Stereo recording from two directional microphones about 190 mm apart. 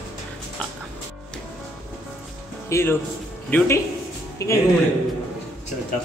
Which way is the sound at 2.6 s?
15° left (ahead or behind).